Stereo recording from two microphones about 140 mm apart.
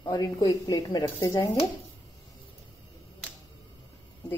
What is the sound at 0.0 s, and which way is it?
A woman's voice, 30° left (ahead or behind).